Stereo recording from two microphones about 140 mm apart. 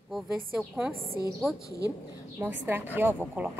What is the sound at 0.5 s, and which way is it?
Speech, 5° right (ahead or behind).